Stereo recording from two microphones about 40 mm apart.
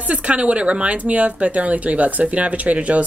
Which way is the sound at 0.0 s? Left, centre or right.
Right.